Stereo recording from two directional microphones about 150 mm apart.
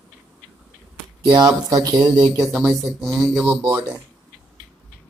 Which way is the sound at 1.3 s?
20° right (ahead or behind).